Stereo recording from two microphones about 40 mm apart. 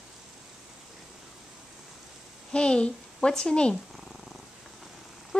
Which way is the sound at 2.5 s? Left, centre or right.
Left.